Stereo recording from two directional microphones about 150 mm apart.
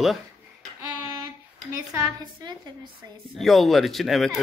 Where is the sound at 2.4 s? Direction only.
25° right (ahead or behind).